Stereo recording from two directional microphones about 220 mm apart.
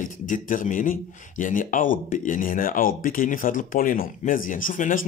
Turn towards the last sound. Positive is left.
turn(degrees=35)  # may be behind; listen again after turning